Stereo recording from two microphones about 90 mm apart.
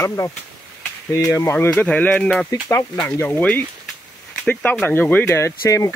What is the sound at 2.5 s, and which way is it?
Speech, 35° left (ahead or behind).